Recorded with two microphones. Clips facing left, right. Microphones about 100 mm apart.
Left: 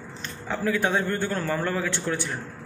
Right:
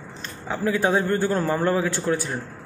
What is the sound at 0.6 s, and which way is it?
Speech, 25° right (ahead or behind).